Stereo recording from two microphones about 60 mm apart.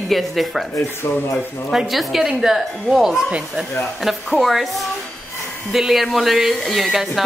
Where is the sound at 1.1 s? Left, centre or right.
Left.